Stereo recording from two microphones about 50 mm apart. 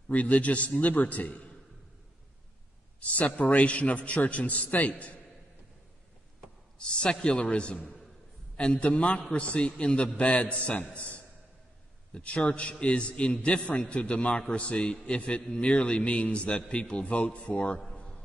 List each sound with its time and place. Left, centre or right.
0.1 s a man's voice: left
3.0 s a man's voice: left
7.0 s a man's voice: centre
17.8 s a sound: centre